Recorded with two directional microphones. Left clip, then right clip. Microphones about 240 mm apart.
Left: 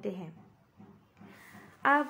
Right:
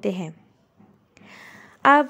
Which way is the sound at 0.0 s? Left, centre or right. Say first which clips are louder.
Right 11 dB; right.